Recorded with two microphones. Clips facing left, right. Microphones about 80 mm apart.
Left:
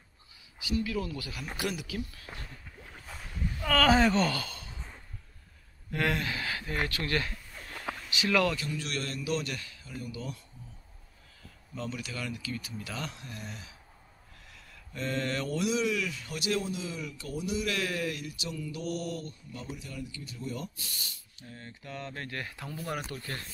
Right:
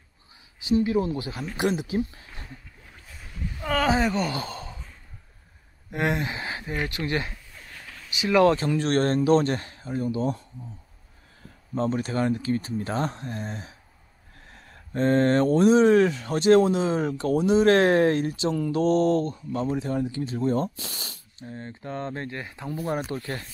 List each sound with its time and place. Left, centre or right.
0.7 s speech: right
2.3 s a sound: right
3.5 s speech: centre
4.4 s a sound: right
5.9 s speech: right
7.5 s a sound: centre
8.1 s speech: right
8.5 s speech: right
11.7 s speech: right
20.9 s speech: right
21.4 s speech: right